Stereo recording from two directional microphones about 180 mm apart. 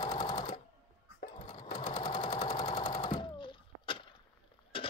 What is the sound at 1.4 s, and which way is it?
Sewing machine, 35° left (ahead or behind).